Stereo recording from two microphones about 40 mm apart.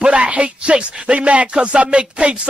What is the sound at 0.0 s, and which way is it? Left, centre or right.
Speech, right.